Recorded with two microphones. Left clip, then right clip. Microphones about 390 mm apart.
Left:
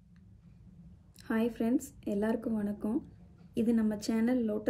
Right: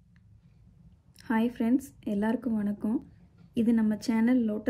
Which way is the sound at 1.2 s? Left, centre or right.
Centre.